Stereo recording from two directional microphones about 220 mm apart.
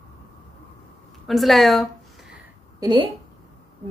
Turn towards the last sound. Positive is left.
turn(degrees=-20)  # may be behind; listen again after turning